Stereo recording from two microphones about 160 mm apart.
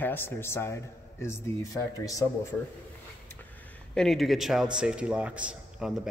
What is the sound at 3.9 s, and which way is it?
A man's voice, centre (ahead or behind).